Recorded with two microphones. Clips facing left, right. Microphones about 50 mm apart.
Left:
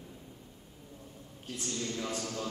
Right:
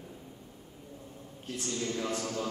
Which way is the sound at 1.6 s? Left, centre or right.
Centre.